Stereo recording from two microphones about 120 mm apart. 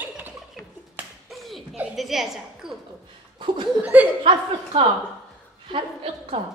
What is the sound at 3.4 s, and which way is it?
Speech, 45° right (ahead or behind).